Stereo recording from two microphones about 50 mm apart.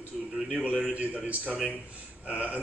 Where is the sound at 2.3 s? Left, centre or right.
Right.